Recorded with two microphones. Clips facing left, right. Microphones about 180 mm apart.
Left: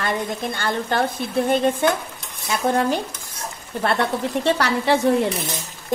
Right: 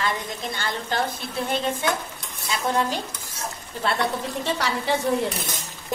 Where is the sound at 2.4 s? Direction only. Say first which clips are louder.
Left 4 dB; 55° left (ahead or behind).